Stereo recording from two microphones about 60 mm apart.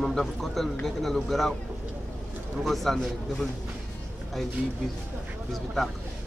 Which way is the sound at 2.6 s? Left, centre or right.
Centre.